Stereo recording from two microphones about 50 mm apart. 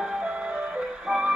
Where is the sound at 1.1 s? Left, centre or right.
Centre.